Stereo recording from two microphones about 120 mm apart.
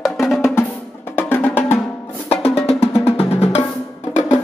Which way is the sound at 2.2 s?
55° left (ahead or behind).